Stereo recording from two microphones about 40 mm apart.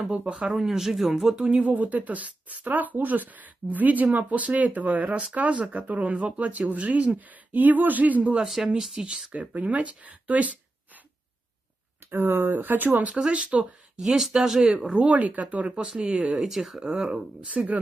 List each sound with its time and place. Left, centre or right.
0.1 s speech: right
0.5 s speech: centre
1.1 s speech: centre
1.6 s speech: right
7.2 s speech: right
8.7 s speech: centre
9.3 s speech: right
12.1 s speech: right
13.1 s speech: right
14.0 s speech: centre
15.0 s speech: right
16.3 s speech: centre
16.8 s speech: centre